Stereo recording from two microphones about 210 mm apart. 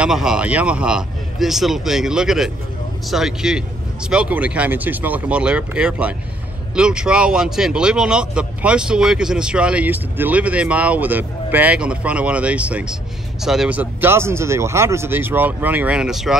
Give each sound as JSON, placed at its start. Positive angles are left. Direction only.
{"t": 0.0, "sound": "speech", "side_deg": -5}